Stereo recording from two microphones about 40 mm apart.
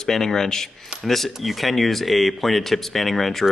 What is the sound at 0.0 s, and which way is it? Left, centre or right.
Speech, centre.